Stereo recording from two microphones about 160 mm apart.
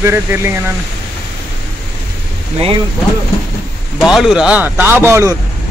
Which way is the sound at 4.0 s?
5° right (ahead or behind).